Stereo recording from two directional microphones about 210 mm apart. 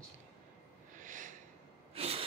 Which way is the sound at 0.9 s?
40° right (ahead or behind).